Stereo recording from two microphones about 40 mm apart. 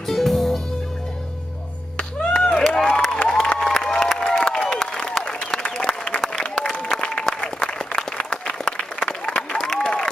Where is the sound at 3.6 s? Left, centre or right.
Centre.